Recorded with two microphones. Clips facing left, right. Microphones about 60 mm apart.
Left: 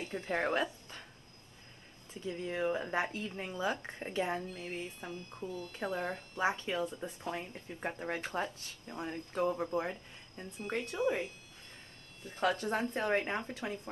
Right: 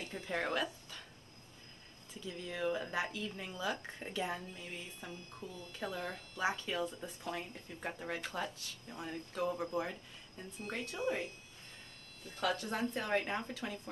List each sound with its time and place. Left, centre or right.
0.0 s speech: left
2.1 s speech: left
4.6 s speech: left
5.0 s speech: left
8.8 s speech: centre
9.5 s speech: centre
12.3 s speech: left